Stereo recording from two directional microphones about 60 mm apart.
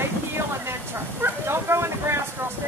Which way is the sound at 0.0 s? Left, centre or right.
Right.